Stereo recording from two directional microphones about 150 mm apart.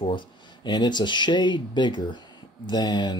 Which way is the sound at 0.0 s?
35° left (ahead or behind).